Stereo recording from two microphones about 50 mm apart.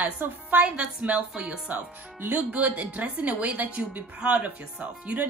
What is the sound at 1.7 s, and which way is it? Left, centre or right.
Speech, right.